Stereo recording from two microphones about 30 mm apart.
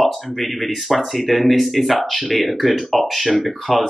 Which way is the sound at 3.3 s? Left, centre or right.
Centre.